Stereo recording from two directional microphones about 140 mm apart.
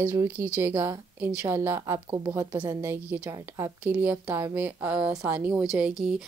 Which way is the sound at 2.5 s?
30° right (ahead or behind).